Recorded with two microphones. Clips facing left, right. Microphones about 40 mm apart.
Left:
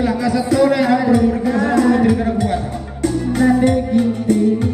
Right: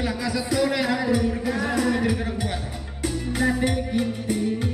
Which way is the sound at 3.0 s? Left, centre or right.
Centre.